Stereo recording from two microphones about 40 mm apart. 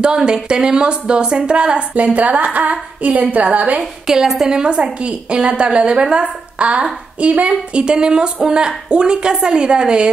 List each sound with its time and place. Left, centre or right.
0.0 s a woman's voice: right
2.1 s a woman's voice: right
4.1 s a woman's voice: centre